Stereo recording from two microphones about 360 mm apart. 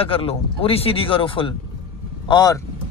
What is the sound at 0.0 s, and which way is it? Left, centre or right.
Speech, centre.